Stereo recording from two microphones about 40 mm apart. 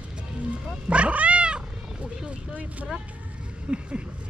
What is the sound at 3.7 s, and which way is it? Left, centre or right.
Speech, right.